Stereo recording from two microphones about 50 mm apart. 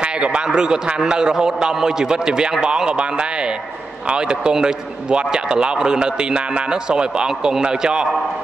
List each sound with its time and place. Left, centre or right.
0.0 s speech: right